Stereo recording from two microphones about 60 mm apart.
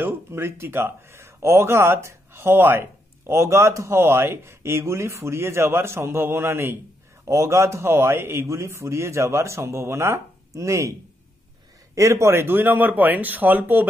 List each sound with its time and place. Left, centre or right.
0.3 s speech: right
7.2 s speech: right